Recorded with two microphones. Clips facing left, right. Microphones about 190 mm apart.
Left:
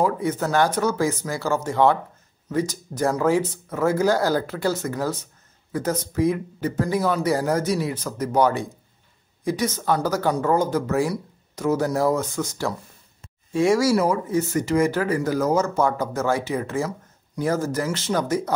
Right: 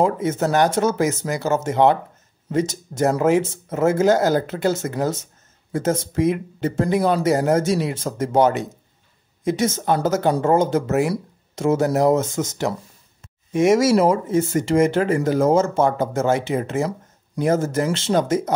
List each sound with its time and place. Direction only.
0.0 s speech: 25° right (ahead or behind)